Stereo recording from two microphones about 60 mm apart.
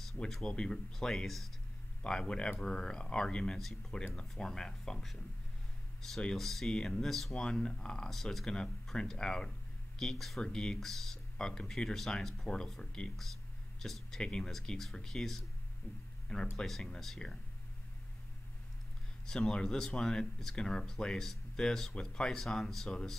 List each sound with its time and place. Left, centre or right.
0.2 s speech: centre
2.0 s speech: centre
6.3 s speech: centre
16.5 s speech: centre
19.2 s speech: centre